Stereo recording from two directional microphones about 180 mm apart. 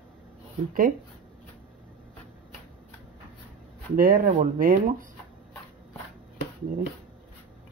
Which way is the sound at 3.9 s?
50° right (ahead or behind).